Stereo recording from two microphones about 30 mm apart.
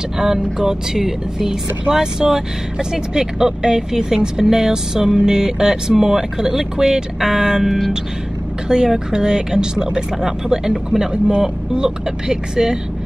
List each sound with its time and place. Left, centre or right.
0.2 s speech: centre